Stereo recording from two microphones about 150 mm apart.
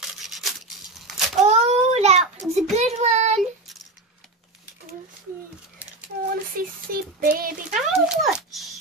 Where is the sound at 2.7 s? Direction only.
45° right (ahead or behind).